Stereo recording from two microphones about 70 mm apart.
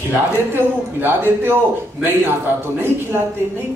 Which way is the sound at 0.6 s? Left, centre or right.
Right.